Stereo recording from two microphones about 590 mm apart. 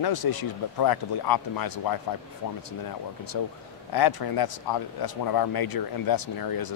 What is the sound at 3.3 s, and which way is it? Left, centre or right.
Speech, left.